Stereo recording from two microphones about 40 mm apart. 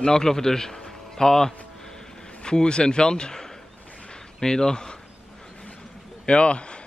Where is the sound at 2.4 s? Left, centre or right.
Left.